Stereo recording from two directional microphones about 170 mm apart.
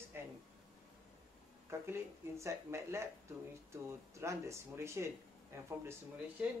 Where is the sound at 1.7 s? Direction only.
15° right (ahead or behind).